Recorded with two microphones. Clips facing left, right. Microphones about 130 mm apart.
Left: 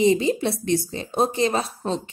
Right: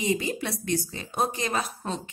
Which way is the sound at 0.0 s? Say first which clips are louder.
Left 9 dB; 25° left (ahead or behind).